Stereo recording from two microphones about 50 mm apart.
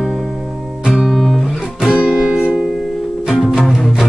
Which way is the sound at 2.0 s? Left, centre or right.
Centre.